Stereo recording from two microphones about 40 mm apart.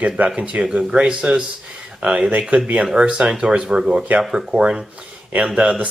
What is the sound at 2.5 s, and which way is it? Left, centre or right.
Speech, right.